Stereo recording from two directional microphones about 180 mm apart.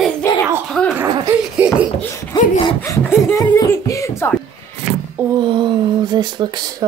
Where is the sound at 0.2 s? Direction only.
15° left (ahead or behind).